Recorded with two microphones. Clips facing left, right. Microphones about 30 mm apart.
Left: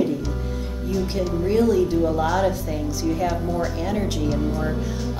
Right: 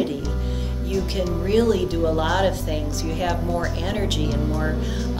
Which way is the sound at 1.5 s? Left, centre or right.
Right.